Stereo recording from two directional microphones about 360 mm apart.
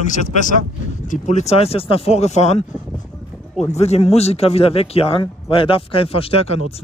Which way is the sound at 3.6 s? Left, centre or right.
Centre.